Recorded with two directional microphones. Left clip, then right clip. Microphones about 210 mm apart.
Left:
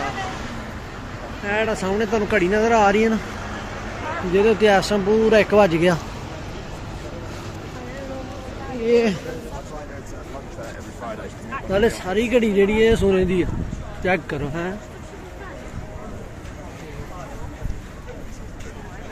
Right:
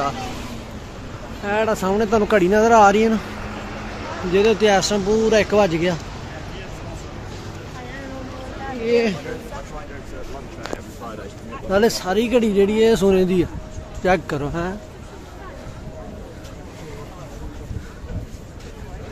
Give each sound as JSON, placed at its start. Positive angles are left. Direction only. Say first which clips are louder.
{"t": 1.5, "sound": "speech", "louder": "right 2 dB", "side_deg": -20}
{"t": 4.3, "sound": "speech", "louder": "even", "side_deg": -5}
{"t": 8.8, "sound": "speech", "louder": "left 1 dB", "side_deg": 5}
{"t": 11.7, "sound": "speech", "louder": "right 2 dB", "side_deg": -15}